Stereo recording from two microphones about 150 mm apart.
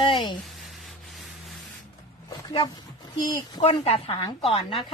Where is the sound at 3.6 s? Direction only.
40° left (ahead or behind).